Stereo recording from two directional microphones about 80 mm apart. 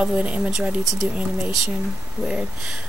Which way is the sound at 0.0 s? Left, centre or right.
Centre.